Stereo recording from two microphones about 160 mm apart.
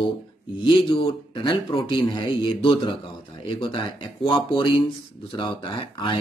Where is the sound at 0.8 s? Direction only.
30° left (ahead or behind).